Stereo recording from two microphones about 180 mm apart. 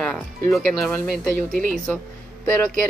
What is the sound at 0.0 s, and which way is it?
Speech, centre (ahead or behind).